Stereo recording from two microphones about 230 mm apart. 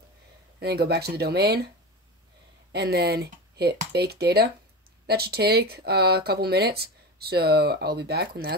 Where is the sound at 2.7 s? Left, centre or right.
Right.